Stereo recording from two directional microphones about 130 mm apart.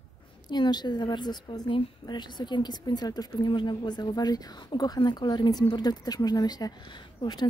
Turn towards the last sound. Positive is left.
turn(degrees=35)  # may be behind; listen again after turning